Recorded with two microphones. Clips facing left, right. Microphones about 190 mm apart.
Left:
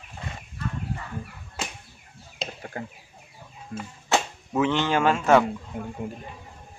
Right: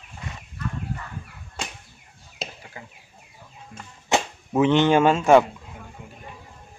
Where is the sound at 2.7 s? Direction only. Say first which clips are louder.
Left 9 dB; 50° left (ahead or behind).